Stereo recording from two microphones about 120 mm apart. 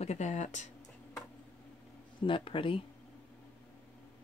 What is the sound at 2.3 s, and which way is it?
Speech, 45° left (ahead or behind).